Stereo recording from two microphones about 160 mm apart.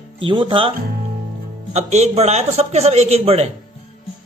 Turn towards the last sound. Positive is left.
turn(degrees=-40)  # may be behind; listen again after turning